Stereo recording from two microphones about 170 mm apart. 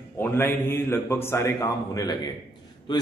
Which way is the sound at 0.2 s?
15° left (ahead or behind).